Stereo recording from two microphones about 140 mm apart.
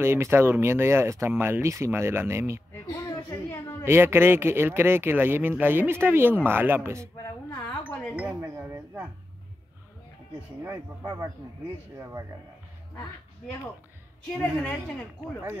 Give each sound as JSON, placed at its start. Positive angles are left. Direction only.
{"t": 0.0, "sound": "speech", "side_deg": -15}
{"t": 3.3, "sound": "a sound", "side_deg": 15}
{"t": 3.8, "sound": "speech", "side_deg": -15}
{"t": 7.9, "sound": "wind chime", "side_deg": 10}
{"t": 8.2, "sound": "chink", "side_deg": -10}
{"t": 10.6, "sound": "speech", "side_deg": -20}
{"t": 14.2, "sound": "a woman's voice", "side_deg": 5}